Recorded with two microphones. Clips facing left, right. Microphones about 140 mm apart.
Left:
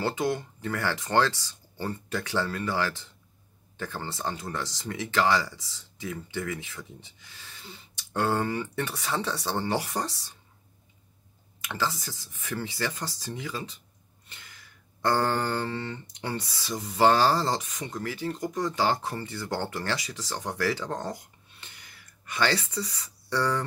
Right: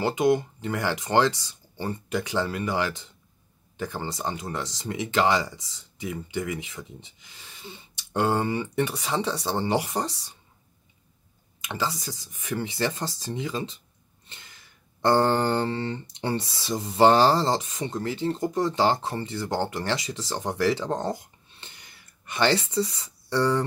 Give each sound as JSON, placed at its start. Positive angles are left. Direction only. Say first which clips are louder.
{"t": 0.0, "sound": "speech", "louder": "right 6 dB", "side_deg": -20}
{"t": 11.6, "sound": "speech", "louder": "right 1 dB", "side_deg": -20}
{"t": 15.0, "sound": "speech", "louder": "right 5 dB", "side_deg": -25}